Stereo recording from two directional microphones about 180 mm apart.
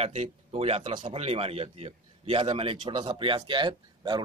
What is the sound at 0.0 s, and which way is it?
Speech, 35° right (ahead or behind).